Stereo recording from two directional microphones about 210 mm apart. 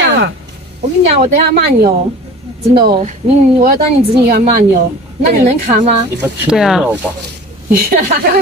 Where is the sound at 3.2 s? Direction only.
30° right (ahead or behind).